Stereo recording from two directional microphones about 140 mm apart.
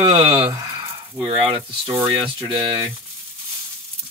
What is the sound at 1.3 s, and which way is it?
Speech, 35° right (ahead or behind).